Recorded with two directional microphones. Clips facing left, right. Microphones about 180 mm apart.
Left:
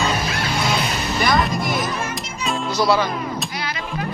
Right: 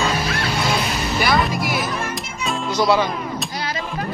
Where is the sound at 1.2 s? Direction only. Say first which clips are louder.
Even; 5° right (ahead or behind).